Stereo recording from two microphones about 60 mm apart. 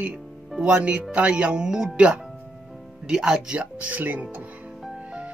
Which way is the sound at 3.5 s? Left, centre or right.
Right.